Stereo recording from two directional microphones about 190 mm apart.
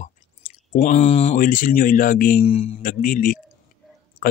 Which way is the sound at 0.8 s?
35° left (ahead or behind).